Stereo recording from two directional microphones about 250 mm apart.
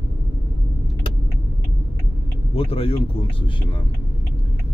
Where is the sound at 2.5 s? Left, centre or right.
Left.